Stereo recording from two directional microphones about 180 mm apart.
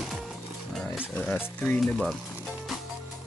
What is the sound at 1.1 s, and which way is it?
Speech, 10° left (ahead or behind).